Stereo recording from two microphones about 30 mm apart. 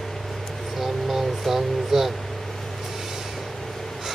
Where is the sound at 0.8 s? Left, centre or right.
Centre.